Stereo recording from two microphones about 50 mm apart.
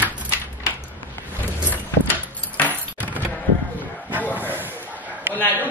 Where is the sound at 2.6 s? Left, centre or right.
Left.